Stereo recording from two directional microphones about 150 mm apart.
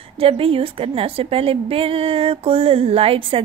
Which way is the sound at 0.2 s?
40° right (ahead or behind).